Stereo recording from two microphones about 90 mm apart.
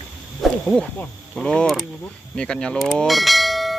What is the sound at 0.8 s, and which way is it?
Mechanisms, 10° left (ahead or behind).